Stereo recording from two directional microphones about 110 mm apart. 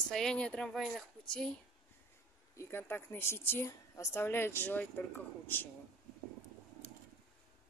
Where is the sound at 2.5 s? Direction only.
20° left (ahead or behind).